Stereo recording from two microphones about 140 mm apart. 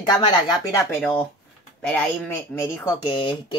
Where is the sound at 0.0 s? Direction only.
30° left (ahead or behind).